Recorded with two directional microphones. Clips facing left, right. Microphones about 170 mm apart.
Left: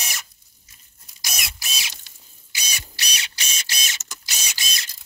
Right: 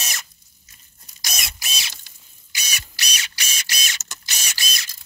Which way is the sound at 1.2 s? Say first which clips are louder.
Right 1 dB; centre (ahead or behind).